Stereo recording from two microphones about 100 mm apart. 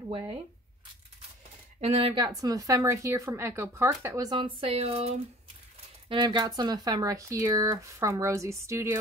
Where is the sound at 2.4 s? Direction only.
35° right (ahead or behind); by 5.1 s 80° right.